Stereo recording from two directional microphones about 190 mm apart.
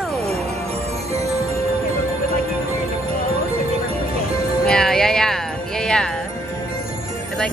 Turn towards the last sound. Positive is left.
turn(degrees=5)  # may be behind; listen again after turning